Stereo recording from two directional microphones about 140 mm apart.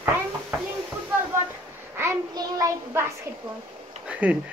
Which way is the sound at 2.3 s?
20° right (ahead or behind).